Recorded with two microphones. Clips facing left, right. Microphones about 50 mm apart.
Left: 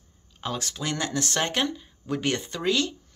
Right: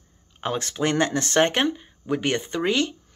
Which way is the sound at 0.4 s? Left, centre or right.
Right.